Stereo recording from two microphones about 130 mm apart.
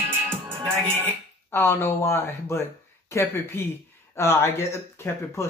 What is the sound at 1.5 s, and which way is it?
Speech, 20° left (ahead or behind).